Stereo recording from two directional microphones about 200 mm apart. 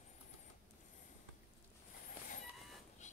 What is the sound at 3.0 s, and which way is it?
Dog, 35° left (ahead or behind).